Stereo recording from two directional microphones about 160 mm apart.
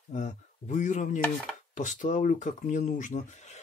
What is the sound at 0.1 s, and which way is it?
Speech, 50° left (ahead or behind).